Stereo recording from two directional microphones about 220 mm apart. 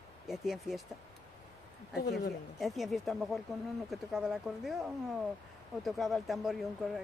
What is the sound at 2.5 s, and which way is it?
Speech, centre (ahead or behind).